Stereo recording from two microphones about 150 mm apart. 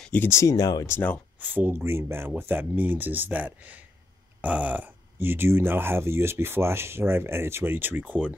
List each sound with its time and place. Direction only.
0.0 s speech: 10° left (ahead or behind)
1.4 s speech: 15° right (ahead or behind)